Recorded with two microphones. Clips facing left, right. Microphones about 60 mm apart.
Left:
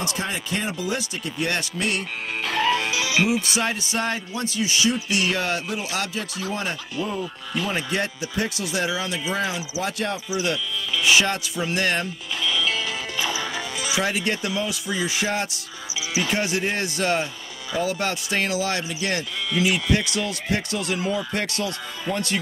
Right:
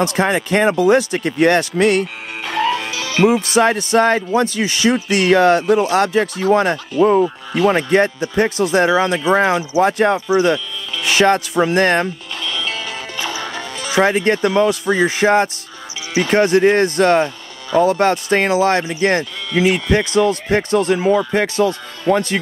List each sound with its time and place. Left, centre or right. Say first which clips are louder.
0.0 s speech: right 11 dB; right
2.4 s music: right 4 dB; centre
3.3 s speech: right 10 dB; right
7.7 s speech: right 11 dB; right
12.4 s music: even; centre
13.9 s speech: right 11 dB; right